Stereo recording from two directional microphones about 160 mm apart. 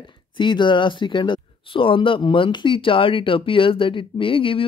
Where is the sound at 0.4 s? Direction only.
30° left (ahead or behind).